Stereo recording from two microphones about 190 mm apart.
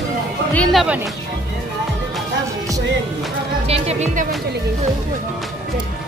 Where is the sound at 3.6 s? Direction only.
35° right (ahead or behind).